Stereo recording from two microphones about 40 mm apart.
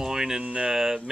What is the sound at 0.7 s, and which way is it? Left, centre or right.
Speech, centre.